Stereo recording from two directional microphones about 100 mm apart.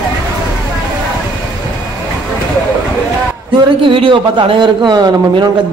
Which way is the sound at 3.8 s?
60° right (ahead or behind).